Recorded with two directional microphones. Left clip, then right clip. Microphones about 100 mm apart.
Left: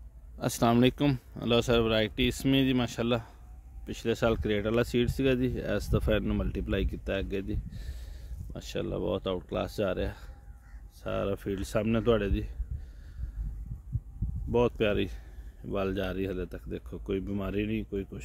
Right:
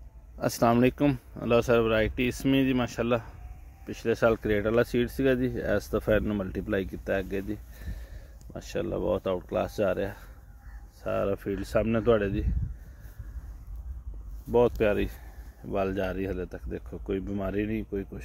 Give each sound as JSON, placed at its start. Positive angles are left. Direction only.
{"t": 0.4, "sound": "speech", "side_deg": 10}
{"t": 0.7, "sound": "speech", "side_deg": 20}
{"t": 14.5, "sound": "speech", "side_deg": 0}